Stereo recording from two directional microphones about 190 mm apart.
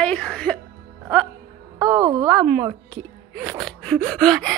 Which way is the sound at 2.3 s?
5° right (ahead or behind).